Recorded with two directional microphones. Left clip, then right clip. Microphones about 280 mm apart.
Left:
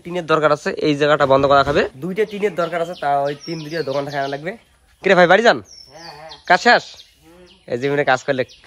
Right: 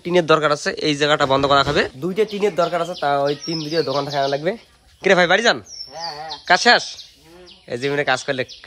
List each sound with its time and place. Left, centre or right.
0.0 s speech: right
0.3 s speech: centre
5.0 s speech: centre